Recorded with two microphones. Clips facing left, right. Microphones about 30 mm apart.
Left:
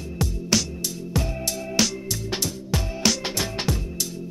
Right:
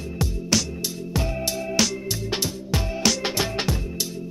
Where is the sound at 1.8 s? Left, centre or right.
Centre.